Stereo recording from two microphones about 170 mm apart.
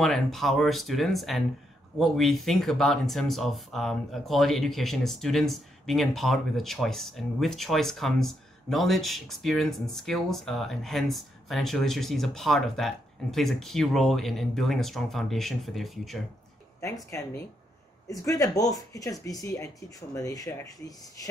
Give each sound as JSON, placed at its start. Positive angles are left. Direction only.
{"t": 0.0, "sound": "speech", "side_deg": 0}
{"t": 16.8, "sound": "speech", "side_deg": 20}